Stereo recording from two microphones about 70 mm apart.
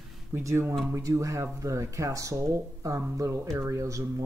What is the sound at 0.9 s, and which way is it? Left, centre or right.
Speech, right.